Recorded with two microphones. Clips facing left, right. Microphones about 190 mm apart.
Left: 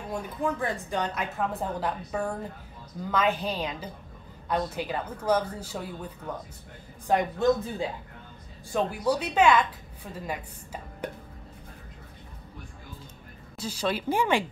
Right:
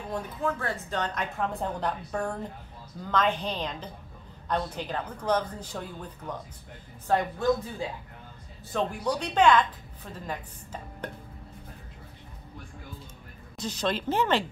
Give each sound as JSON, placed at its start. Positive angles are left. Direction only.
{"t": 0.1, "sound": "a woman's voice", "side_deg": 15}
{"t": 8.7, "sound": "a woman's voice", "side_deg": 5}
{"t": 13.6, "sound": "a woman's voice", "side_deg": 10}